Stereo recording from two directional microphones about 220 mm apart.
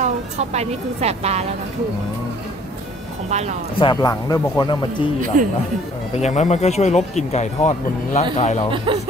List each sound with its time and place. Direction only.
0.0 s speech: 30° right (ahead or behind)
3.3 s speech: 30° right (ahead or behind)
3.8 s speech: 15° left (ahead or behind)
5.3 s speech: 35° right (ahead or behind)
6.2 s speech: 30° left (ahead or behind)
8.7 s speech: 25° right (ahead or behind)